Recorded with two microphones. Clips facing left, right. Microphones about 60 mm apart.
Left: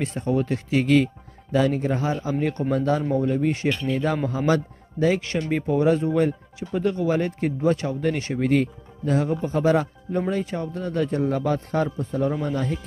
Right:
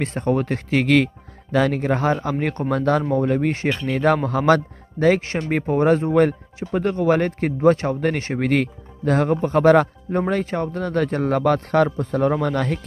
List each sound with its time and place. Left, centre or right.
0.0 s speech: right
3.5 s speech: right
3.8 s speech: right
5.2 s speech: right
5.5 s speech: right
8.4 s speech: right